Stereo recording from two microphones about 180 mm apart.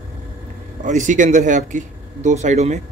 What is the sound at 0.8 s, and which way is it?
Speech, 45° right (ahead or behind).